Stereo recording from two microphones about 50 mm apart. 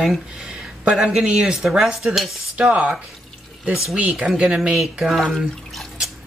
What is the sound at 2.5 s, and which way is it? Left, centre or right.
Speech, right.